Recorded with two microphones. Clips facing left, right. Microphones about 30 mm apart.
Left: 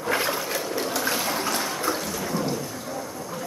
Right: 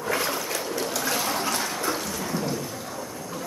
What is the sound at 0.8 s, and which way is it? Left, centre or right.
Water, centre.